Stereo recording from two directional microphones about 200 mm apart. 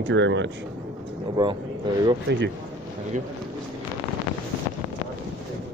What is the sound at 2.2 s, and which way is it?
Speech, 60° right (ahead or behind).